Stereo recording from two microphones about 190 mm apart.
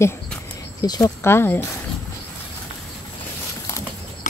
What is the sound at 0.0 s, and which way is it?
Speech, 15° left (ahead or behind).